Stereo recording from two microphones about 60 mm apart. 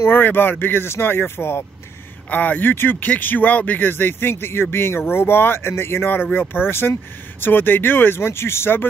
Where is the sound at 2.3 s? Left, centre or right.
Left.